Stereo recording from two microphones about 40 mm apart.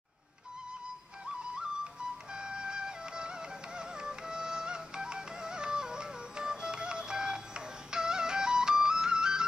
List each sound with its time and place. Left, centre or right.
1.2 s music: right